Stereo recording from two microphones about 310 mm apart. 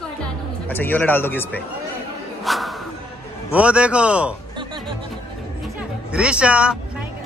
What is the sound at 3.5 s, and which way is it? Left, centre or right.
Speech, centre.